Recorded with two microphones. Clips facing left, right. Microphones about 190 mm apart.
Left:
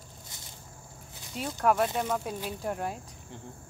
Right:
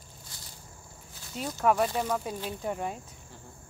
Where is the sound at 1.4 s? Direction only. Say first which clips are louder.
Even; centre (ahead or behind).